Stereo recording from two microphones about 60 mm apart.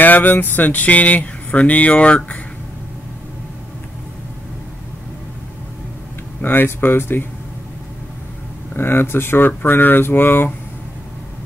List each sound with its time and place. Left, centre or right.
0.0 s speech: left
6.4 s speech: left
8.7 s speech: left